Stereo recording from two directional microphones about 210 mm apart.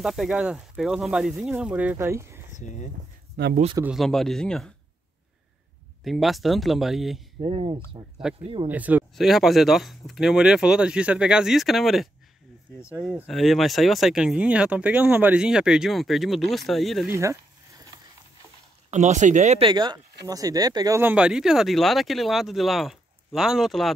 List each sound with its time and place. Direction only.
0.0 s speech: centre (ahead or behind)
3.4 s speech: 50° right (ahead or behind)
3.7 s speech: 5° right (ahead or behind)
6.0 s speech: centre (ahead or behind)
7.3 s speech: 25° right (ahead or behind)
8.3 s speech: 5° right (ahead or behind)
12.7 s speech: 10° left (ahead or behind)
13.0 s speech: centre (ahead or behind)
17.1 s a sound: 15° right (ahead or behind)
18.9 s speech: 35° right (ahead or behind); by 23.9 s centre (ahead or behind)